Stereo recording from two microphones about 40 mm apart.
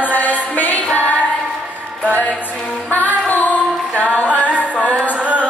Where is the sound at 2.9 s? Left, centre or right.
Left.